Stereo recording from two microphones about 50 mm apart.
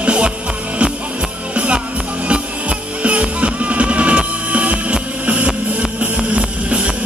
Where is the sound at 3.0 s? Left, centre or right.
Right.